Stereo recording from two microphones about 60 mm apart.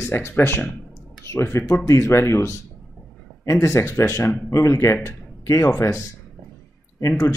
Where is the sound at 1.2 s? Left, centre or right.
Left.